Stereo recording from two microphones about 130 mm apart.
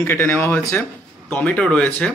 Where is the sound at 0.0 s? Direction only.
15° left (ahead or behind).